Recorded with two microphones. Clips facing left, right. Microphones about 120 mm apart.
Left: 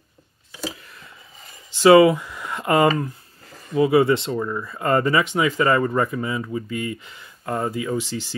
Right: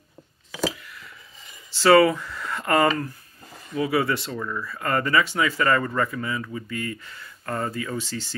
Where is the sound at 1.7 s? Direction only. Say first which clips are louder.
Left 4 dB; 15° left (ahead or behind).